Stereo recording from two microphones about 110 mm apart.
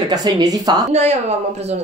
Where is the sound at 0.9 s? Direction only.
90° right.